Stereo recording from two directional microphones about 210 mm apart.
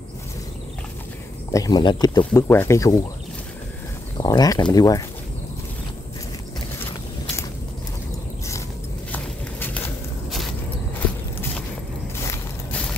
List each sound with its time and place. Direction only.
1.5 s speech: 15° left (ahead or behind)
4.2 s speech: 15° left (ahead or behind)
9.1 s a sound: 10° left (ahead or behind)
12.2 s vehicle: 10° left (ahead or behind)